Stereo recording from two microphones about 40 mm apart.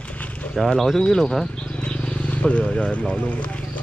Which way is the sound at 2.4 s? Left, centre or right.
Left.